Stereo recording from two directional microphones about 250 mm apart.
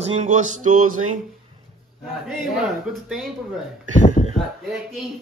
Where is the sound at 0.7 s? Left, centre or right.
Right.